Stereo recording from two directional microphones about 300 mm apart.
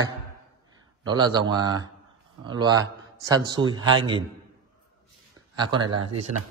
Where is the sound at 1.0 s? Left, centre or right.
Centre.